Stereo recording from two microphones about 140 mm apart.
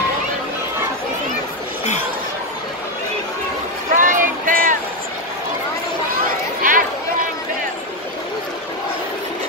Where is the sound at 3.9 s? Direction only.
70° right (ahead or behind).